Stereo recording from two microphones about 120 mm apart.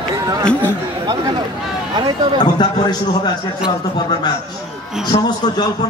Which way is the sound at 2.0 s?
40° right (ahead or behind).